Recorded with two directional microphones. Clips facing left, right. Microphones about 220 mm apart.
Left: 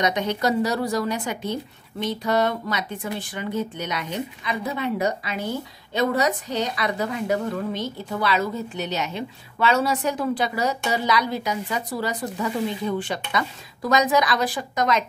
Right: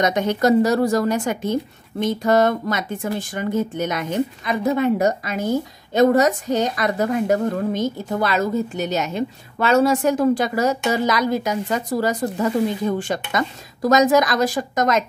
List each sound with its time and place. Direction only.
0.0 s a woman's voice: 45° right (ahead or behind)